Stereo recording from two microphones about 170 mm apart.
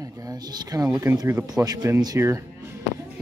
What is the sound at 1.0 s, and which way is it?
Speech, 15° right (ahead or behind).